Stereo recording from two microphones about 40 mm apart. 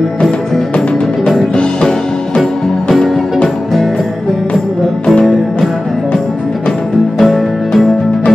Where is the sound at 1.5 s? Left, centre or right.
Left.